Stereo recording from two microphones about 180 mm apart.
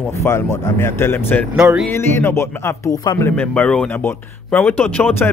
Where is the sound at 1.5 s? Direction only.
5° right (ahead or behind).